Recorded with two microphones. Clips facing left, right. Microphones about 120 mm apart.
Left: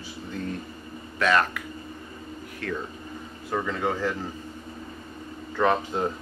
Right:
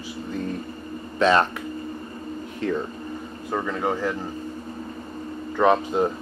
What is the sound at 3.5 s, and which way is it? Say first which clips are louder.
Speech: right 2 dB; 10° right (ahead or behind).